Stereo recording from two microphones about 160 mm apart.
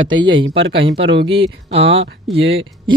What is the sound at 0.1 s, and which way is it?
Speech, 30° right (ahead or behind).